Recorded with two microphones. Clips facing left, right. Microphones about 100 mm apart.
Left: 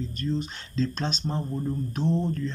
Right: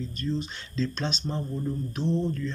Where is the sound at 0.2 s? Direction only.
50° left (ahead or behind).